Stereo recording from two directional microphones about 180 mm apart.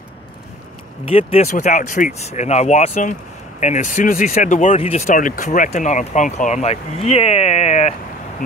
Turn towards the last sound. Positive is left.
turn(degrees=40)  # may be behind; listen again after turning